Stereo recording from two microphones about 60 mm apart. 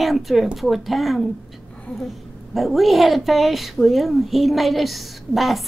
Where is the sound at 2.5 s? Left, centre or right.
Centre.